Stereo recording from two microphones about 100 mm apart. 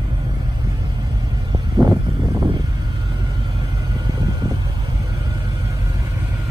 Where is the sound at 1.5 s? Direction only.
45° right (ahead or behind).